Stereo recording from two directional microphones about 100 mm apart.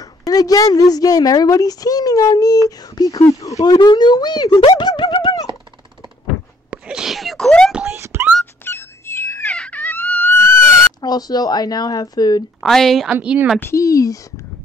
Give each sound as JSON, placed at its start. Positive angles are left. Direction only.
{"t": 0.0, "sound": "a woman's voice", "side_deg": 35}
{"t": 6.7, "sound": "sneeze", "side_deg": -5}
{"t": 7.9, "sound": "wail", "side_deg": -25}
{"t": 8.6, "sound": "telephone dialing", "side_deg": 25}
{"t": 9.5, "sound": "music", "side_deg": 10}
{"t": 11.0, "sound": "a woman's voice", "side_deg": 40}
{"t": 12.5, "sound": "speech", "side_deg": 0}
{"t": 13.1, "sound": "speech", "side_deg": -10}
{"t": 13.6, "sound": "a woman's voice", "side_deg": 30}